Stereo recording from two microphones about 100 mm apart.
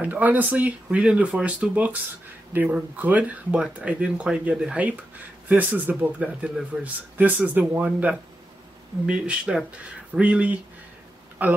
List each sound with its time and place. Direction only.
0.0 s speech: 15° right (ahead or behind)